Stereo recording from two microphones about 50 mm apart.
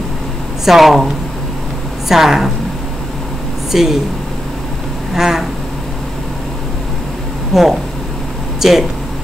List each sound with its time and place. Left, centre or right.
0.7 s speech: centre
2.0 s speech: centre
3.7 s speech: centre
5.1 s a sound: centre
7.5 s speech: centre